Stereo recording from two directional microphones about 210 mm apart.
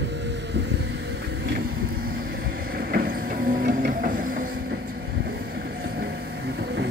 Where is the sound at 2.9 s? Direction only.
45° right (ahead or behind).